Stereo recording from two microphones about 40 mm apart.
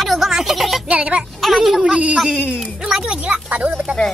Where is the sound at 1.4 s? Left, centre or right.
Centre.